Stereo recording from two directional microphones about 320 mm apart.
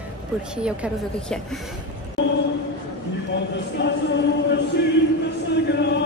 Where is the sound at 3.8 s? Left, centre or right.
Left.